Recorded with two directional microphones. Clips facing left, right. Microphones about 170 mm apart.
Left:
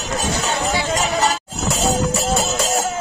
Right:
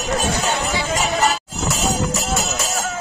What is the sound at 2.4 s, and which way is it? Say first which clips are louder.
Music: left 3 dB; 30° left (ahead or behind).